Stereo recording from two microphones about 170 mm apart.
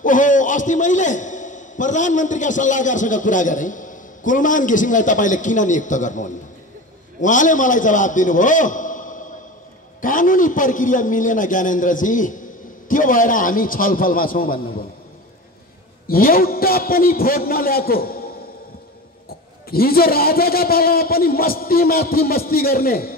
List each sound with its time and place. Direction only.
0.0 s a man's voice: 50° left (ahead or behind)
16.1 s a man's voice: 60° left (ahead or behind)
19.7 s a man's voice: 60° left (ahead or behind)